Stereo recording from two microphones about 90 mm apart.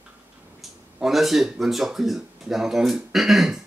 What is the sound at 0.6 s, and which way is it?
Speech, centre (ahead or behind).